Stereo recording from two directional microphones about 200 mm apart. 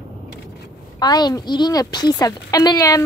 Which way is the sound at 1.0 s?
20° left (ahead or behind).